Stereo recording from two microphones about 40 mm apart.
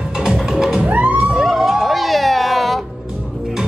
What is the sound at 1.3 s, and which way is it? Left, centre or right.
Music, centre.